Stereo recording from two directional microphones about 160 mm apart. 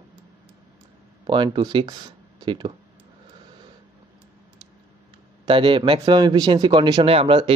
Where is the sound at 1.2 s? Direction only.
30° right (ahead or behind).